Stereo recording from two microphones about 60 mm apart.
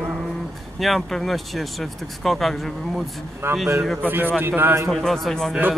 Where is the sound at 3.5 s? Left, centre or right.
Right.